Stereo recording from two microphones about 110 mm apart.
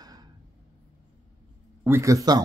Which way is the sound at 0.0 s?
35° right (ahead or behind).